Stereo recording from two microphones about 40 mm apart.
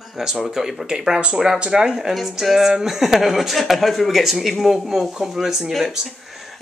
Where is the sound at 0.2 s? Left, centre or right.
Centre.